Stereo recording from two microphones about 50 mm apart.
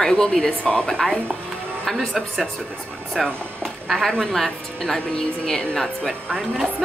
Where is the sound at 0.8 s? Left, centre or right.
Centre.